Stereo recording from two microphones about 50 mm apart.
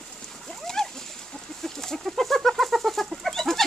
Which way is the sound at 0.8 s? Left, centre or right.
Centre.